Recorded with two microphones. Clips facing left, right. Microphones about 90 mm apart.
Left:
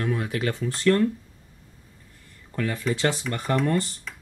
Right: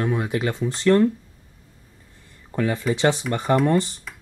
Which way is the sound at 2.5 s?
25° right (ahead or behind).